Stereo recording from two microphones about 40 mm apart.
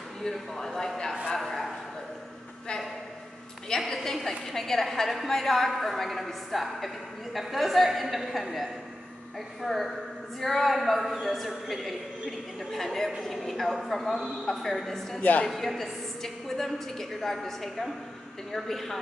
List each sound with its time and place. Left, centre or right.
0.2 s speech: centre
1.3 s bow-wow: centre
3.6 s a woman's voice: centre
15.1 s a woman's voice: left
15.5 s a woman's voice: centre